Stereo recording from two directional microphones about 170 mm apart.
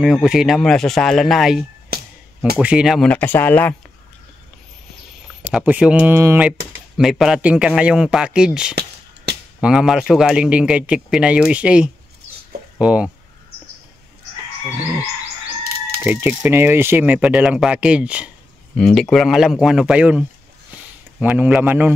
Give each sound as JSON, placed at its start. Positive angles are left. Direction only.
{"t": 0.0, "sound": "speech", "side_deg": 0}
{"t": 1.9, "sound": "a sound", "side_deg": -65}
{"t": 2.5, "sound": "speech", "side_deg": -5}
{"t": 5.4, "sound": "speech", "side_deg": -10}
{"t": 8.7, "sound": "a sound", "side_deg": -75}
{"t": 9.6, "sound": "speech", "side_deg": -5}
{"t": 16.0, "sound": "speech", "side_deg": -10}